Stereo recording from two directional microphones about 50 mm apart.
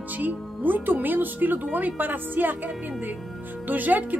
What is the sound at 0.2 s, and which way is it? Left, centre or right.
Speech, right.